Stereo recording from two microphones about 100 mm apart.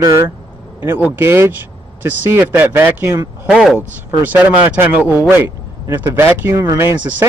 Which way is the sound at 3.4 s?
5° right (ahead or behind).